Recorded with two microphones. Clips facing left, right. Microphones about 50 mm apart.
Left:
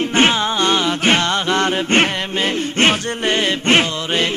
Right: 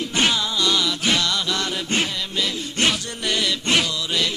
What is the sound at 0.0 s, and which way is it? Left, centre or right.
Music, left.